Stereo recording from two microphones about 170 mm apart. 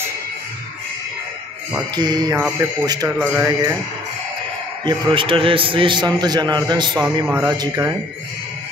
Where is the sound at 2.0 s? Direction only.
25° right (ahead or behind).